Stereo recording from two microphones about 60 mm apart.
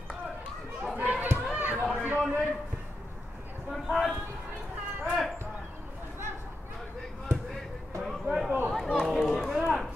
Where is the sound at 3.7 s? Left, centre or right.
Centre.